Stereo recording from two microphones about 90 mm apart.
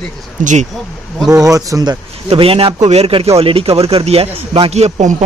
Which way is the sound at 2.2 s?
90° right.